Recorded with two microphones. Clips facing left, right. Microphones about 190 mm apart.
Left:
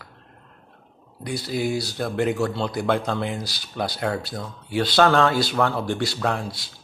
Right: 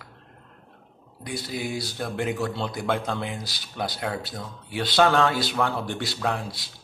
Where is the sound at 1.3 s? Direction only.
40° left (ahead or behind).